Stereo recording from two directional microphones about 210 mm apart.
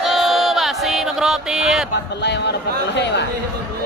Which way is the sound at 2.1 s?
55° left (ahead or behind).